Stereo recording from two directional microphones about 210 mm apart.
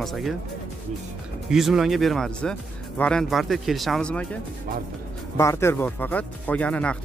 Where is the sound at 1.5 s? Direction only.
Centre (ahead or behind).